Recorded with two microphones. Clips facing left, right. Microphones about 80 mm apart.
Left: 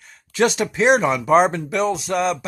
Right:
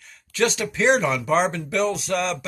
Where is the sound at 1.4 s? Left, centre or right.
Left.